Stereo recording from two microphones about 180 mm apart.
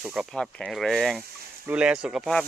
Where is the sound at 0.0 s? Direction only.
5° right (ahead or behind).